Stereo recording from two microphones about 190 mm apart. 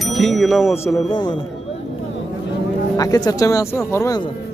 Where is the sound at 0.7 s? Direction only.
15° left (ahead or behind).